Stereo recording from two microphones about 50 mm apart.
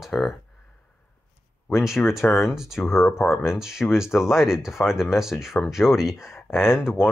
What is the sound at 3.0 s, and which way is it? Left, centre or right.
Speech, left.